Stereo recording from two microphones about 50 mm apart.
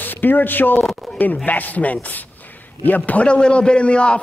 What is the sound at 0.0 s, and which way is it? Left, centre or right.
A man's voice, left.